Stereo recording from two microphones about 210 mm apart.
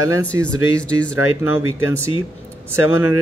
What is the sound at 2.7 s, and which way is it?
Speech, 10° right (ahead or behind).